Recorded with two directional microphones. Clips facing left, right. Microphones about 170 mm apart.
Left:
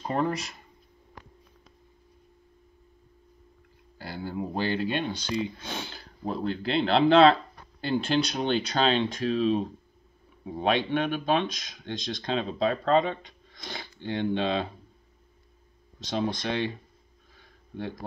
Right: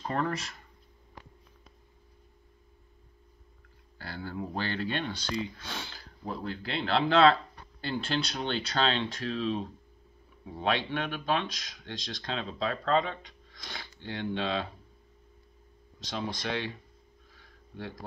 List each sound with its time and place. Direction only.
0.0 s speech: 15° left (ahead or behind)
4.0 s speech: 15° left (ahead or behind)
16.0 s speech: 25° left (ahead or behind)
17.7 s speech: 20° left (ahead or behind)